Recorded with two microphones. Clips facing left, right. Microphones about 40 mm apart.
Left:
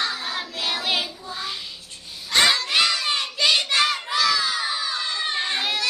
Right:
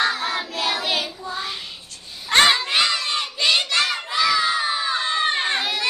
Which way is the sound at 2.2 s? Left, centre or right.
Right.